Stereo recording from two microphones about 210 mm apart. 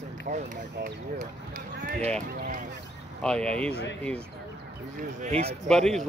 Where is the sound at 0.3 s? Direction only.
40° right (ahead or behind).